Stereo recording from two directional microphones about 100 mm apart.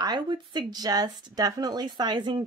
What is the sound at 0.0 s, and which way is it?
Speech, 45° right (ahead or behind).